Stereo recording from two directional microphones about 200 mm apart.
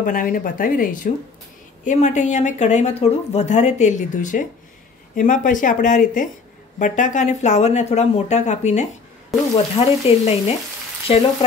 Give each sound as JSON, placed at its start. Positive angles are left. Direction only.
{"t": 0.0, "sound": "speech", "side_deg": 45}
{"t": 11.1, "sound": "frying", "side_deg": 30}